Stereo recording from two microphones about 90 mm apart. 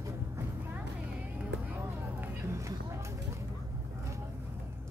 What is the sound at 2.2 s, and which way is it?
Vehicle, 30° right (ahead or behind).